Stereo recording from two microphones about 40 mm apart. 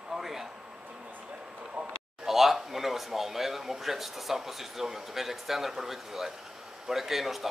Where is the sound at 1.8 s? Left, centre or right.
Right.